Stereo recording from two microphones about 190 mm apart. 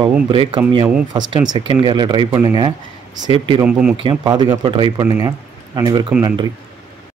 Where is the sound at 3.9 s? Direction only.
25° right (ahead or behind).